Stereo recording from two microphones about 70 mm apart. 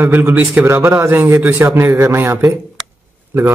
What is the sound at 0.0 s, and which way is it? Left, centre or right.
A man's voice, right.